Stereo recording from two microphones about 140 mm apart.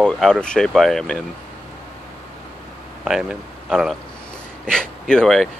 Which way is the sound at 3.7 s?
Centre (ahead or behind).